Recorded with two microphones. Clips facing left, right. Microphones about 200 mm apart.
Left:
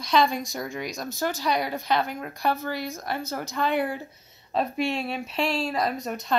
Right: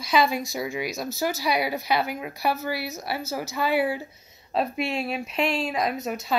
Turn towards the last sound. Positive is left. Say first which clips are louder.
# right 1 dB
turn(degrees=-5)  # may be behind; listen again after turning